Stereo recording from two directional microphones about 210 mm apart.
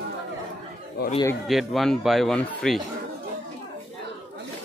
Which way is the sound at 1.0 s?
45° left (ahead or behind).